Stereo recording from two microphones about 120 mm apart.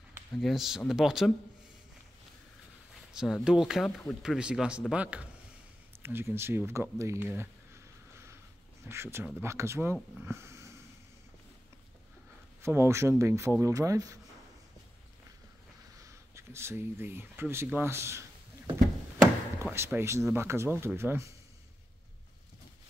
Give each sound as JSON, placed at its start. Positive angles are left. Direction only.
{"t": 0.4, "sound": "speech", "side_deg": 0}
{"t": 2.9, "sound": "speech", "side_deg": -5}
{"t": 4.2, "sound": "speech", "side_deg": -5}
{"t": 8.8, "sound": "speech", "side_deg": -20}
{"t": 10.2, "sound": "a sound", "side_deg": -20}
{"t": 12.6, "sound": "speech", "side_deg": -20}
{"t": 16.0, "sound": "speech", "side_deg": -25}
{"t": 19.6, "sound": "speech", "side_deg": -20}